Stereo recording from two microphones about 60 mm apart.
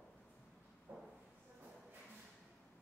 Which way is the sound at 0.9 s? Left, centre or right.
Right.